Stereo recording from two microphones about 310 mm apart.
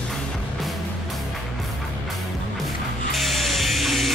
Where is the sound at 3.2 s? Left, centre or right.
Centre.